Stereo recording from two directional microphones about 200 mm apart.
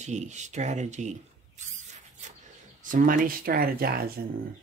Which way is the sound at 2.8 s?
45° right (ahead or behind).